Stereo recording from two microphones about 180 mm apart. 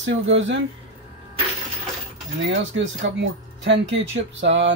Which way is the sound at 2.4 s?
90° right.